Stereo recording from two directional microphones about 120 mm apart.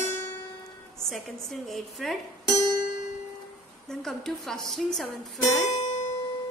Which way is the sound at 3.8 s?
5° left (ahead or behind).